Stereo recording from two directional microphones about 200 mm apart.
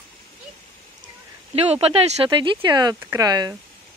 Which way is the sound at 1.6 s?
30° right (ahead or behind).